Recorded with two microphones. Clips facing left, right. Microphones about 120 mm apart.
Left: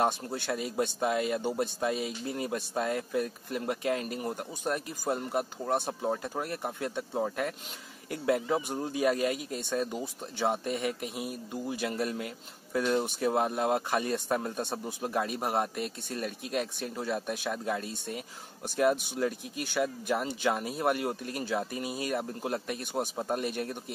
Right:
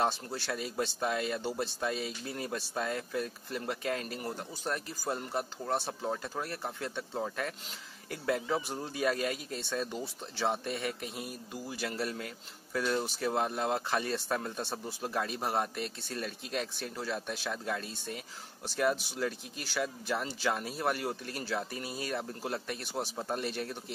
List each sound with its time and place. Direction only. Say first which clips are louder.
0.5 s a man's voice: left 4 dB; 15° left (ahead or behind)
19.7 s a man's voice: left 4 dB; 10° left (ahead or behind)